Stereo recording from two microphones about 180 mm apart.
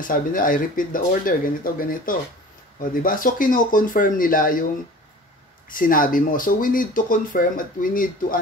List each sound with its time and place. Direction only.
0.0 s speech: 50° left (ahead or behind)
5.7 s speech: 50° left (ahead or behind)